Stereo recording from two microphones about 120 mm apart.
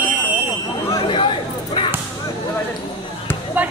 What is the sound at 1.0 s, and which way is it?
Chatter, 45° left (ahead or behind).